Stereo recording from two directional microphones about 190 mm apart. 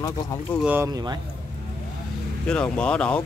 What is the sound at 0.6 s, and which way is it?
Speech, 15° right (ahead or behind).